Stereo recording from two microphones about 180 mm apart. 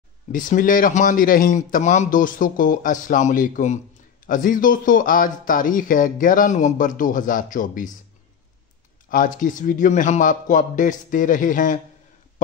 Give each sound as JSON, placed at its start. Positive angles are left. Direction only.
{"t": 0.3, "sound": "speech", "side_deg": 45}
{"t": 9.1, "sound": "speech", "side_deg": 45}